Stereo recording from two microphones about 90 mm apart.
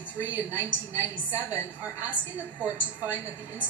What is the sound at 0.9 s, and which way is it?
A woman's voice, 40° left (ahead or behind).